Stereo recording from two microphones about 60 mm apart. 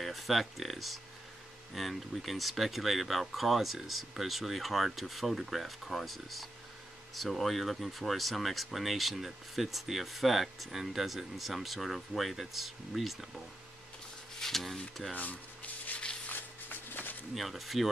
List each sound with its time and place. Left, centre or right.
0.0 s speech: centre
14.4 s speech: centre
15.1 s a sound: left
17.3 s speech: centre